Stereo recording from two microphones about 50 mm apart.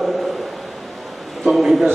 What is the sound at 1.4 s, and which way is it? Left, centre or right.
Speech, centre.